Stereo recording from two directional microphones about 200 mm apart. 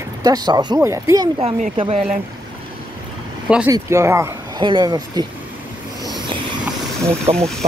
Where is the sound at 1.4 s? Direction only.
30° right (ahead or behind).